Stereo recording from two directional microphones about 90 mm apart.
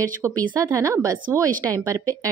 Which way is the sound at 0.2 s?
30° right (ahead or behind).